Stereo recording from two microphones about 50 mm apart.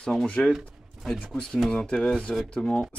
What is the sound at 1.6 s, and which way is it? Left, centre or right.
Speech, centre.